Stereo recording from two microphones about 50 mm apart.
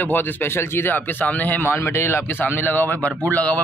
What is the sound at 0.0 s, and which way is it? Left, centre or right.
Speech, left.